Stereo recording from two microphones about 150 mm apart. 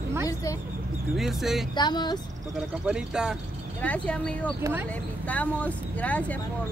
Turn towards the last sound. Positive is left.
turn(degrees=10)  # may be behind; listen again after turning